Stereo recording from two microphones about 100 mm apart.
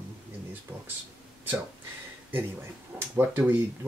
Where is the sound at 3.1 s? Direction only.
20° right (ahead or behind).